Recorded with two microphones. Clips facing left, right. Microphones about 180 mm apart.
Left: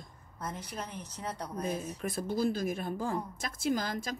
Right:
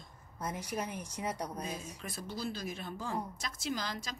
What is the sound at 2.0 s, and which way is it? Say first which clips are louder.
A woman's voice: left 10 dB; 50° left (ahead or behind).